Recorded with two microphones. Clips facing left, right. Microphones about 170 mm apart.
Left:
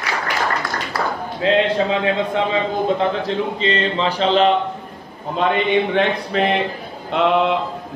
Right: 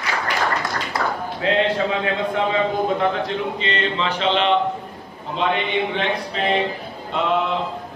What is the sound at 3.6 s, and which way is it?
Speech, 35° left (ahead or behind).